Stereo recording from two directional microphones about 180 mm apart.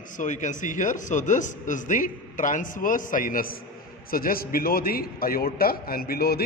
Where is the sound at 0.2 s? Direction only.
45° left (ahead or behind).